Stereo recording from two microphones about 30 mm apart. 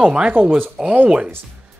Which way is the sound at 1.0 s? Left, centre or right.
Right.